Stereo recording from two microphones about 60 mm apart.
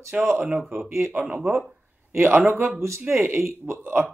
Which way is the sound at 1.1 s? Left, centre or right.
Centre.